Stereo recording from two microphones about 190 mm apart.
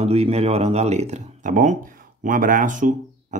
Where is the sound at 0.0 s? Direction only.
35° right (ahead or behind).